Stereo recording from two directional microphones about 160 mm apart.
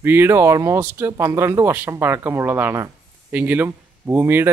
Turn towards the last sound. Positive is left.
turn(degrees=-15)  # may be behind; listen again after turning